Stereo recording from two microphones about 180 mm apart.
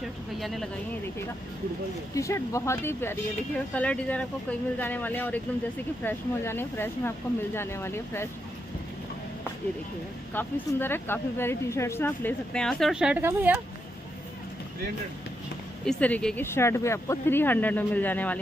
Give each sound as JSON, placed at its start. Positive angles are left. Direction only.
{"t": 0.4, "sound": "speech", "side_deg": 0}
{"t": 2.1, "sound": "speech", "side_deg": 15}
{"t": 10.3, "sound": "speech", "side_deg": 10}
{"t": 15.8, "sound": "speech", "side_deg": 5}